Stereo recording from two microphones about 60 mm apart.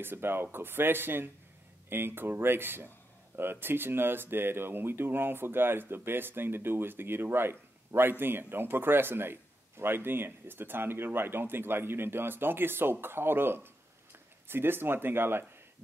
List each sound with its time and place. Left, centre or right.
0.0 s speech: right